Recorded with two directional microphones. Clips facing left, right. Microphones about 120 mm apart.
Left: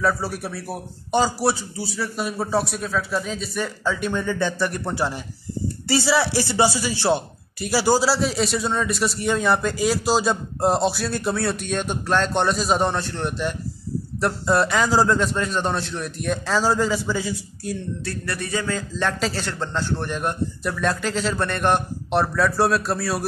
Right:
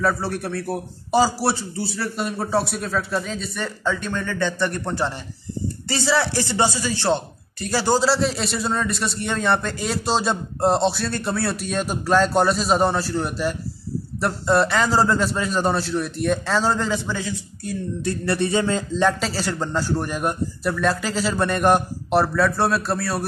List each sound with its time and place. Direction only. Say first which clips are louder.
0.0 s a man's voice: right 1 dB; 5° left (ahead or behind)
18.0 s a sound: right 7 dB; 25° right (ahead or behind)
19.0 s a man's voice: right 2 dB; centre (ahead or behind)